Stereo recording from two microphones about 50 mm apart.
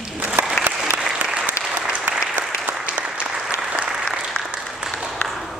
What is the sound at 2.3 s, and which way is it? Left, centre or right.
Applause, right.